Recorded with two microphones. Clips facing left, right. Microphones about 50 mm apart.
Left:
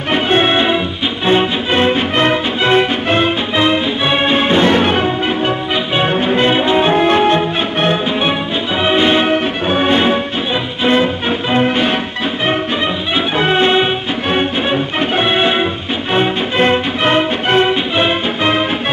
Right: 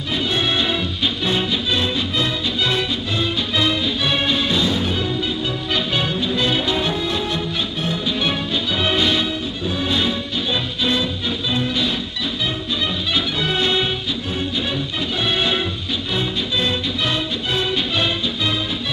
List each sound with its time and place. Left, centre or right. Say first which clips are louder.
0.1 s music: left 8 dB; left
3.5 s music: left 5 dB; left
4.6 s music: left 9 dB; left
8.2 s music: left 5 dB; left
9.3 s music: left 10 dB; left
13.1 s music: left 9 dB; left
14.3 s music: left 10 dB; left